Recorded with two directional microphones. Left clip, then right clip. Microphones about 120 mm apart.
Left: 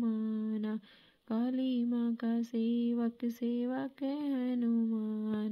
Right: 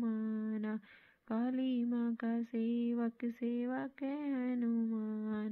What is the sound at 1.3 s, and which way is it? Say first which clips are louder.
Speech: left 2 dB; 35° left (ahead or behind).